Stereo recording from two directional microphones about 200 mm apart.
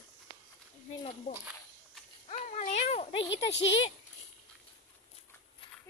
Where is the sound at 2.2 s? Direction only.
35° left (ahead or behind).